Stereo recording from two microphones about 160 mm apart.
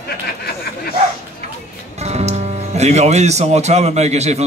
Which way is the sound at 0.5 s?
70° left (ahead or behind).